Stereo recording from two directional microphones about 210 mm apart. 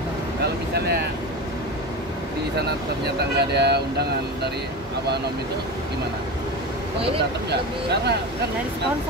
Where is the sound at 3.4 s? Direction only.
50° right (ahead or behind).